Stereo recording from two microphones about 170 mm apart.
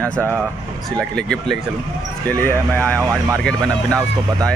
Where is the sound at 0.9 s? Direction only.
5° left (ahead or behind).